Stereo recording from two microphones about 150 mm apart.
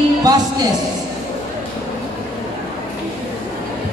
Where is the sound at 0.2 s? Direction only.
25° right (ahead or behind).